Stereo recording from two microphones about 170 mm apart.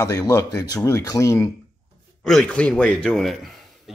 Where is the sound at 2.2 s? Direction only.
5° left (ahead or behind).